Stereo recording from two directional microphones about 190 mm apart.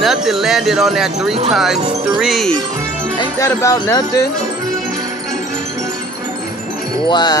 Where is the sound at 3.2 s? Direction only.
15° left (ahead or behind).